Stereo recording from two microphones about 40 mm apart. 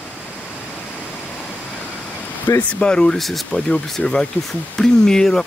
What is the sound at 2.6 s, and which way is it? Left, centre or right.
Speech, left.